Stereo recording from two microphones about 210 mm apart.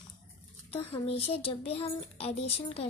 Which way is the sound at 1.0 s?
30° left (ahead or behind).